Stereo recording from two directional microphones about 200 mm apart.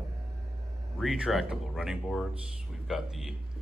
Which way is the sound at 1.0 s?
Centre (ahead or behind).